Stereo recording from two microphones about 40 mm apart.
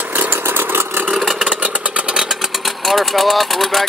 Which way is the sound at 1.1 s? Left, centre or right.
Centre.